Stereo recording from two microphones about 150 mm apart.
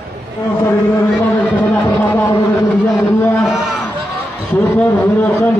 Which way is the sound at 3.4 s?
5° right (ahead or behind).